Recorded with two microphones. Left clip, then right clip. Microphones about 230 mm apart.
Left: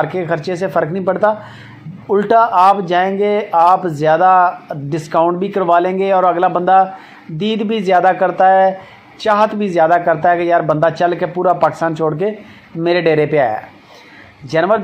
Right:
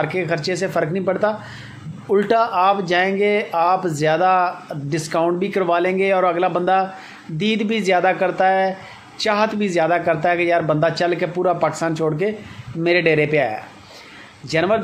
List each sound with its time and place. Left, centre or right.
0.0 s a man's voice: centre
14.5 s a man's voice: centre